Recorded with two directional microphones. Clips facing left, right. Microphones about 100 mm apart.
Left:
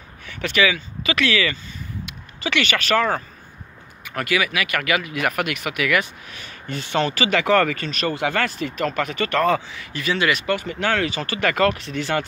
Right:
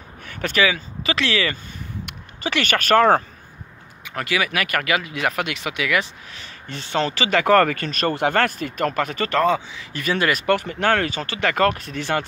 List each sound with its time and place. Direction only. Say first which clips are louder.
0.3 s speech: even; 40° right (ahead or behind)
2.4 s speech: right 1 dB; 40° right (ahead or behind)
4.0 s speech: left 1 dB; 25° right (ahead or behind)
4.5 s speech: right 1 dB; 45° right (ahead or behind)
4.8 s speech: even; 30° right (ahead or behind)
9.4 s speech: right 1 dB; 20° right (ahead or behind)
9.9 s speech: even; 40° right (ahead or behind)
10.4 s speech: right 3 dB; 55° right (ahead or behind)
11.1 s speech: left 1 dB; 25° right (ahead or behind)
11.6 s speech: even; 40° right (ahead or behind)